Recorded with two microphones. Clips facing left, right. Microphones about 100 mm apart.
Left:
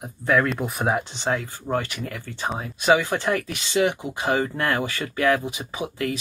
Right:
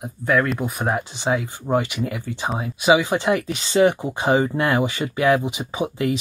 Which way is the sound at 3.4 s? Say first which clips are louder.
Right 5 dB; 30° right (ahead or behind).